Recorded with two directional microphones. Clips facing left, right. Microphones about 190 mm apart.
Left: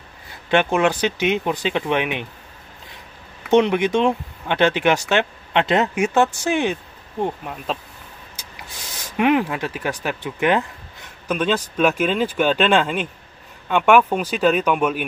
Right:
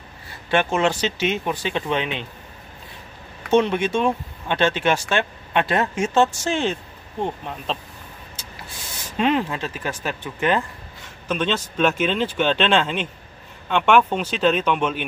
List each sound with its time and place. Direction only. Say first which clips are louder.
0.5 s speech: left 2 dB; 15° left (ahead or behind)
3.4 s speech: left 2 dB; 15° left (ahead or behind)
9.1 s speech: left 3 dB; 15° left (ahead or behind)